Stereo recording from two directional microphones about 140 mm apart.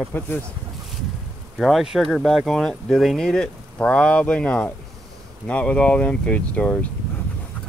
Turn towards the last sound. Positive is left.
turn(degrees=10)  # may be behind; listen again after turning